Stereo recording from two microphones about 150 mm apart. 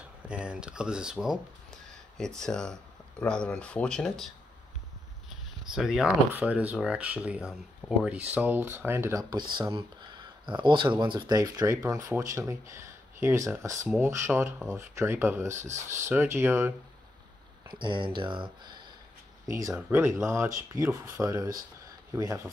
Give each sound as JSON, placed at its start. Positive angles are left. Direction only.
{"t": 0.3, "sound": "speech", "side_deg": -5}
{"t": 5.7, "sound": "speech", "side_deg": -5}
{"t": 9.5, "sound": "speech", "side_deg": -30}
{"t": 17.6, "sound": "speech", "side_deg": -30}